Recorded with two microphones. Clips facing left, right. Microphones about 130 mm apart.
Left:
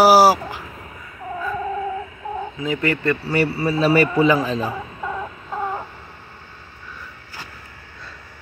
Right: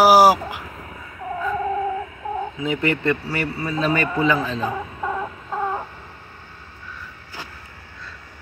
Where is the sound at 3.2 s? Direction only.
5° left (ahead or behind).